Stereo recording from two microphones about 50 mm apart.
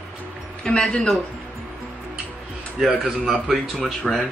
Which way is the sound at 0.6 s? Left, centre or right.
Centre.